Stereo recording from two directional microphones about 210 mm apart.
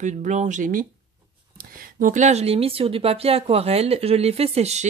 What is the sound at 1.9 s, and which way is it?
Speech, 40° right (ahead or behind).